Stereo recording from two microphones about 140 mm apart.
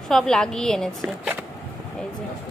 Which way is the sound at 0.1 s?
5° left (ahead or behind).